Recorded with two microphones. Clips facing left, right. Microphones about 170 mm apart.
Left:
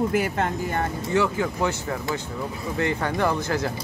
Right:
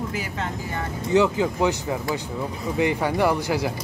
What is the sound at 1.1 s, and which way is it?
Speech, 15° right (ahead or behind).